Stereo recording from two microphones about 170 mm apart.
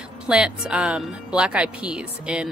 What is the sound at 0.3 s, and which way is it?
Speech, 5° right (ahead or behind).